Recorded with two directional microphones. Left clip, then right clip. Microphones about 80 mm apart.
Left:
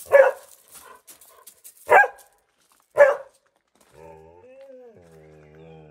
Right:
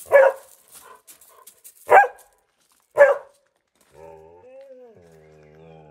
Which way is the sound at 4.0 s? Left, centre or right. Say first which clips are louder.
Right 2 dB; right.